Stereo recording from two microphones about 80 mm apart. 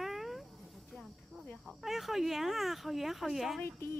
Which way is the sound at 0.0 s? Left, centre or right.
Centre.